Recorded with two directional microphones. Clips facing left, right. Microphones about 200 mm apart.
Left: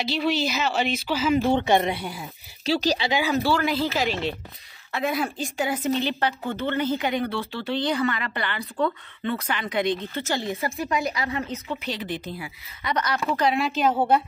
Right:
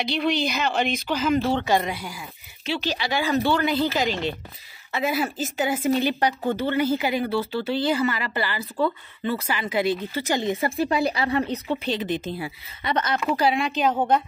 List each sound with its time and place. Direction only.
0.0 s speech: 5° left (ahead or behind)
1.5 s speech: 20° left (ahead or behind); by 3.1 s 40° left (ahead or behind)
3.1 s speech: 10° left (ahead or behind); by 10.5 s 15° right (ahead or behind)
10.5 s speech: 30° right (ahead or behind)
13.2 s speech: 10° right (ahead or behind); by 14.2 s 5° left (ahead or behind)